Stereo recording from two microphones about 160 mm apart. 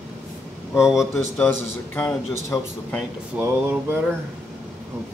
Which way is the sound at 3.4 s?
10° right (ahead or behind).